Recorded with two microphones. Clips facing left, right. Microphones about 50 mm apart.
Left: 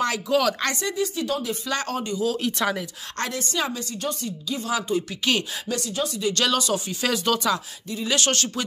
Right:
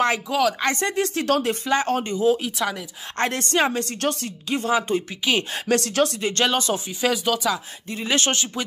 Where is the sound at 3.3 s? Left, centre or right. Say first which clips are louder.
Right 6 dB; right.